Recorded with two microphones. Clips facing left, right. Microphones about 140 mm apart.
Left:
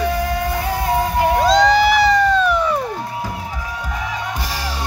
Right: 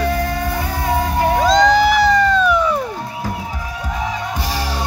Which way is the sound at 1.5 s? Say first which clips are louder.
Right 2 dB; 5° left (ahead or behind).